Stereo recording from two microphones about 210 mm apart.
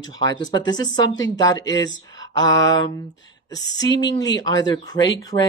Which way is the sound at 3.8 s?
20° left (ahead or behind).